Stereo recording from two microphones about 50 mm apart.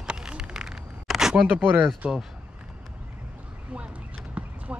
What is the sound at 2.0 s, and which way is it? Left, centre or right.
Speech, right.